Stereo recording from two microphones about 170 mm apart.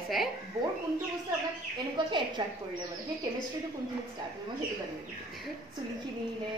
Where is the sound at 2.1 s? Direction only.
30° right (ahead or behind).